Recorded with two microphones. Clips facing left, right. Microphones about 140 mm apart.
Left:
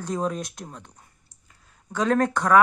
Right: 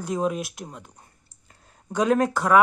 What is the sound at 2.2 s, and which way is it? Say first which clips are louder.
Speech: even; 5° right (ahead or behind).